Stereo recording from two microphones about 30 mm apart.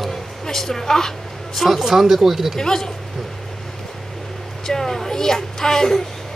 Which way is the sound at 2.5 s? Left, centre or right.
Centre.